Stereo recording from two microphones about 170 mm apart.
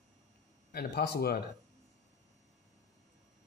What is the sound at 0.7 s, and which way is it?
Speech, 65° left (ahead or behind).